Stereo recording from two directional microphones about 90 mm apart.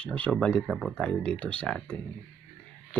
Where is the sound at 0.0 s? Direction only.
15° left (ahead or behind).